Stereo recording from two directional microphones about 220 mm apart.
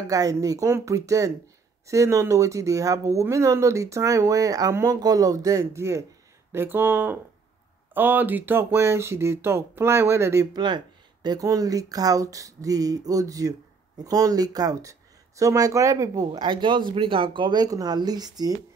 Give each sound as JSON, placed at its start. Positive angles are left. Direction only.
{"t": 0.0, "sound": "speech", "side_deg": -15}